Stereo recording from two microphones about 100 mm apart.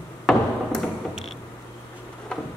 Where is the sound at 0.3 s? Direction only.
5° left (ahead or behind).